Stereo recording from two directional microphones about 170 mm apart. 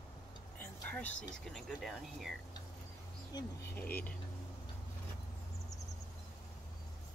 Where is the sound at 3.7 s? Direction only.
10° left (ahead or behind).